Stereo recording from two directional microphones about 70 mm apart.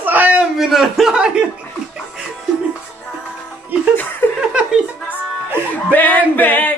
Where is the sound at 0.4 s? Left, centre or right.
Centre.